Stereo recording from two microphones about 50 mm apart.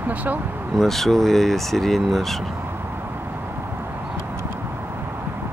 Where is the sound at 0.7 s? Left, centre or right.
Centre.